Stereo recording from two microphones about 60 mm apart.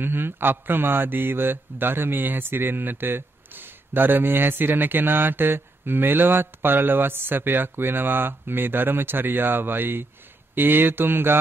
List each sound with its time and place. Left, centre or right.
0.0 s a man's voice: right